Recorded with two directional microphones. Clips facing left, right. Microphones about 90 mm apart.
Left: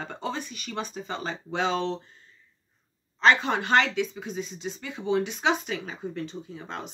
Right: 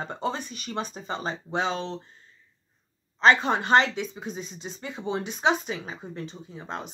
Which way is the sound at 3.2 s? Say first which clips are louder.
Right 1 dB; 25° right (ahead or behind).